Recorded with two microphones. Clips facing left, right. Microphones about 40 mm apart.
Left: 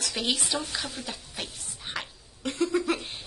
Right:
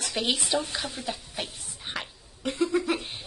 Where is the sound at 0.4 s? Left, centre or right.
Right.